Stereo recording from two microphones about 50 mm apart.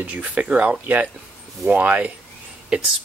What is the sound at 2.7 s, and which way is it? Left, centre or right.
Speech, right.